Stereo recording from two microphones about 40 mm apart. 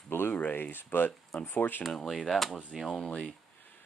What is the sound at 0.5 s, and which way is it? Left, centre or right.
Speech, left.